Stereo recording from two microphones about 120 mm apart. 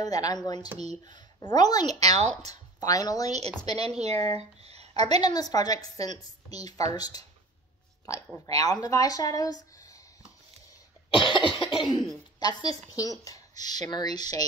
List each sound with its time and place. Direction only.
0.0 s a woman's voice: 30° left (ahead or behind)
0.7 s speech: 65° right (ahead or behind)
1.1 s a woman's voice: 35° left (ahead or behind)
3.7 s speech: 60° right (ahead or behind)
4.9 s a woman's voice: 35° left (ahead or behind)
11.3 s cough: 45° left (ahead or behind)
12.4 s a woman's voice: 35° left (ahead or behind)